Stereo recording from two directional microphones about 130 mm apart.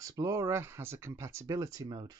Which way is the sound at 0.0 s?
25° right (ahead or behind).